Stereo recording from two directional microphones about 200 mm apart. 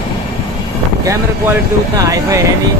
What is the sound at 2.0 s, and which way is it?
Speech, 15° right (ahead or behind).